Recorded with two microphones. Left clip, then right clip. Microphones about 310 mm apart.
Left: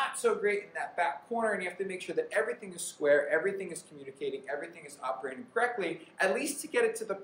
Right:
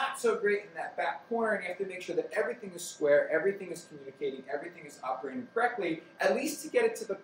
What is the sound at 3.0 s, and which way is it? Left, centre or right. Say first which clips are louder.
Speech: even; centre.